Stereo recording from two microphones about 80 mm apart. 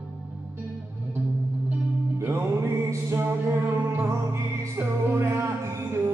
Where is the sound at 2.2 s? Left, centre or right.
Right.